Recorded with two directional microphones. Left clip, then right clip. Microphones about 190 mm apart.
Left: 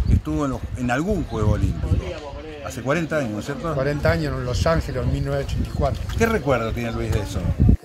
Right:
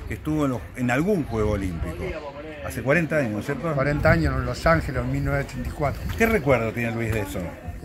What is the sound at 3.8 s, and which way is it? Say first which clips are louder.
A man's voice: right 1 dB; 25° left (ahead or behind).